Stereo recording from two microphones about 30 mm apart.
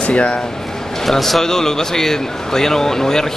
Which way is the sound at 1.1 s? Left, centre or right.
Centre.